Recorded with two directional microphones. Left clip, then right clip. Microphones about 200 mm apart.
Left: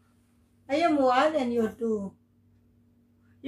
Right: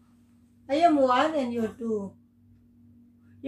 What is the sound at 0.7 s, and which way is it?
Speech, 10° right (ahead or behind).